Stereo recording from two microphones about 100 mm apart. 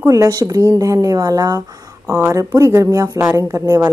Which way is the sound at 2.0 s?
30° right (ahead or behind).